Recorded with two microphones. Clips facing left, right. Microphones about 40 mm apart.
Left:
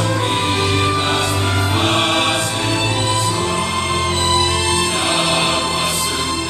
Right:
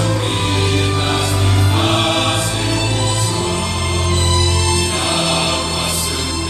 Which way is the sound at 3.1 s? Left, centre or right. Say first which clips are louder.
Left 1 dB; centre.